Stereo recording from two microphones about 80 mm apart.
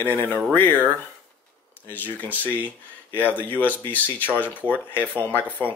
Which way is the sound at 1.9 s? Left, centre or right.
Left.